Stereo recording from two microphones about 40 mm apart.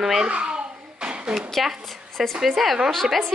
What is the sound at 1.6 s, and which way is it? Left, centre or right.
A woman's voice, centre.